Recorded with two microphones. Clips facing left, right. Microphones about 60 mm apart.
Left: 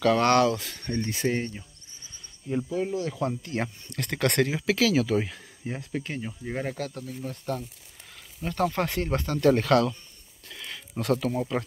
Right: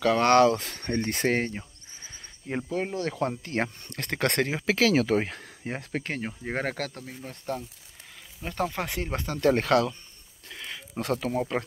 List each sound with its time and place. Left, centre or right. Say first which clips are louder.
0.2 s speech: right 2 dB; right
6.6 s speech: right 1 dB; right
7.2 s speech: left 1 dB; right
8.4 s speech: left 3 dB; centre
10.5 s a sound: right 1 dB; centre
11.0 s speech: left 1 dB; right